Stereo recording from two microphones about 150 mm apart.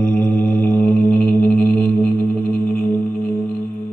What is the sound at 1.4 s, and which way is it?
Music, 10° left (ahead or behind).